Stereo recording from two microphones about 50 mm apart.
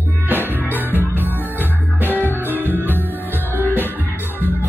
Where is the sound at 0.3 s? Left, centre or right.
Right.